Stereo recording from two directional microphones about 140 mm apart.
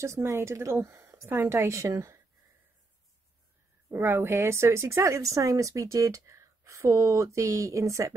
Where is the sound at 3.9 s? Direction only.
15° right (ahead or behind).